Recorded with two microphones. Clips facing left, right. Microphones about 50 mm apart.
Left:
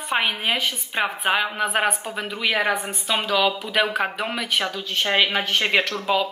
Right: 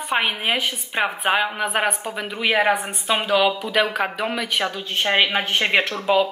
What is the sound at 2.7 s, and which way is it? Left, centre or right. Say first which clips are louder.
Speech: right 1 dB; right.